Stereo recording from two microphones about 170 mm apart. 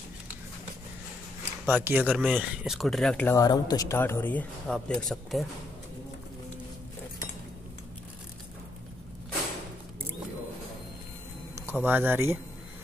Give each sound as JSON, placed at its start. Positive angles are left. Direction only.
{"t": 1.7, "sound": "speech", "side_deg": -10}
{"t": 2.0, "sound": "speech", "side_deg": 0}
{"t": 11.6, "sound": "speech", "side_deg": -10}